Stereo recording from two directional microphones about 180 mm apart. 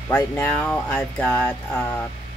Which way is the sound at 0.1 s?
10° left (ahead or behind).